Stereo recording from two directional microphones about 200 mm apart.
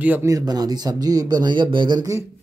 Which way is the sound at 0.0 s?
10° right (ahead or behind).